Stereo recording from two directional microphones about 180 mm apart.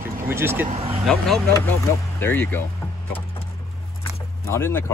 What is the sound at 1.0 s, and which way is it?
Speech, centre (ahead or behind).